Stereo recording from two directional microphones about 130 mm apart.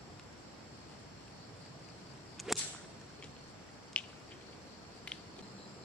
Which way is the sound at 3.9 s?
10° left (ahead or behind).